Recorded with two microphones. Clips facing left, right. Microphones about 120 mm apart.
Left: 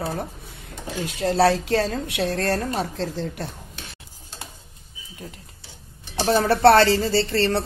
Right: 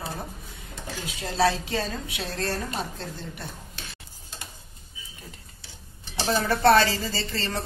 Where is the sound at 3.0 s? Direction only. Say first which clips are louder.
Left 9 dB; 90° left.